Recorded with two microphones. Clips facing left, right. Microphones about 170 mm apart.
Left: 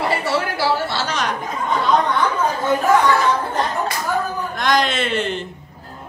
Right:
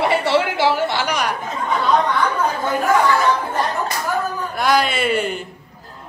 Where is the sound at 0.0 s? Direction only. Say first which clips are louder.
Right 3 dB; 25° right (ahead or behind).